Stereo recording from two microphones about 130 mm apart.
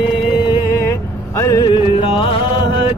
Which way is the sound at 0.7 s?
20° left (ahead or behind).